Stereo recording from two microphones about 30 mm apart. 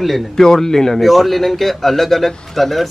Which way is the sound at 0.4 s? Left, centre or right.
Centre.